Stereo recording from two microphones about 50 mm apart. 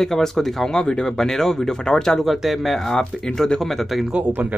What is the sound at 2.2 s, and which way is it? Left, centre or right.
Speech, centre.